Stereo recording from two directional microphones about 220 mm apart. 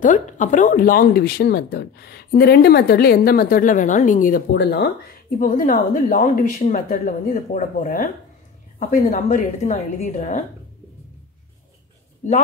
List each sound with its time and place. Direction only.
0.0 s speech: 35° left (ahead or behind)
12.2 s speech: 35° left (ahead or behind)